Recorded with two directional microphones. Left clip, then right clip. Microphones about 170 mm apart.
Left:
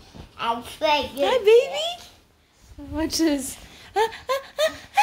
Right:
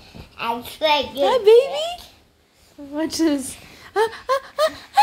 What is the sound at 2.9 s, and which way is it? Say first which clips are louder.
Speech: right 2 dB; 25° right (ahead or behind).